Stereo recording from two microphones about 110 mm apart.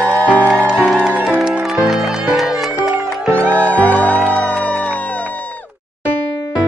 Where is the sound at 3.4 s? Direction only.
15° left (ahead or behind).